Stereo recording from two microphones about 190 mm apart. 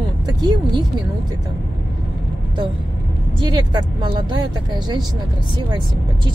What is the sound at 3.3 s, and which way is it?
Speech, 25° right (ahead or behind).